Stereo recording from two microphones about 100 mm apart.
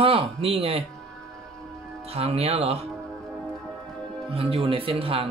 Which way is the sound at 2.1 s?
90° right.